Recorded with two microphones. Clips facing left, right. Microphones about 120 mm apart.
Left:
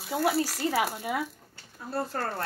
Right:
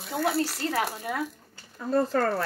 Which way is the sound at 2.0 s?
90° right.